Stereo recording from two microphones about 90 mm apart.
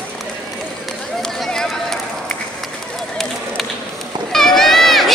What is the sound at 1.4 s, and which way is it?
Run, 5° left (ahead or behind).